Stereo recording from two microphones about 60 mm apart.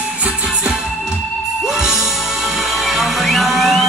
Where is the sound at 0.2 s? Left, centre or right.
Centre.